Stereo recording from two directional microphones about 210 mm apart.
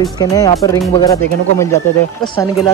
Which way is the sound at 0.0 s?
15° left (ahead or behind).